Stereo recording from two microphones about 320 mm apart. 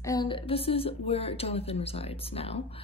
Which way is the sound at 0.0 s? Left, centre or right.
Centre.